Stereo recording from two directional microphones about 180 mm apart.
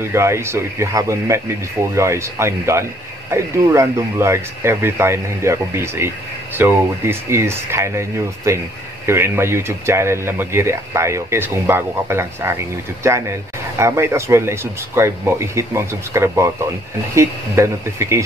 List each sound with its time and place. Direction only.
0.0 s speech: 15° right (ahead or behind)